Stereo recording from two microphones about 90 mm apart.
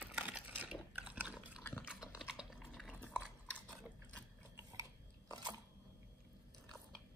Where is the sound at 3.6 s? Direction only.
15° left (ahead or behind).